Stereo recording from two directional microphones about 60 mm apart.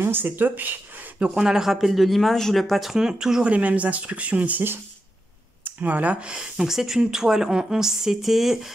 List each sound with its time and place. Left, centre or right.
0.0 s speech: right
1.2 s speech: centre
3.4 s speech: right; by 8.5 s centre